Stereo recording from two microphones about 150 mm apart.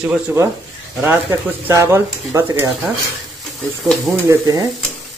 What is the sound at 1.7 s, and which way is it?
Speech, 20° right (ahead or behind).